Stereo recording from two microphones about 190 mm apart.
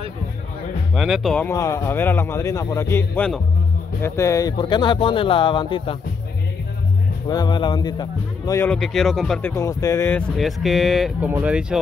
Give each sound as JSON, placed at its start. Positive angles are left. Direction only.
{"t": 0.9, "sound": "speech", "side_deg": 0}
{"t": 7.2, "sound": "speech", "side_deg": 20}
{"t": 8.6, "sound": "speech", "side_deg": 0}
{"t": 10.3, "sound": "speech", "side_deg": 0}